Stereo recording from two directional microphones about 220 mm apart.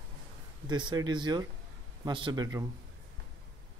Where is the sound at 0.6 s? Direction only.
20° right (ahead or behind).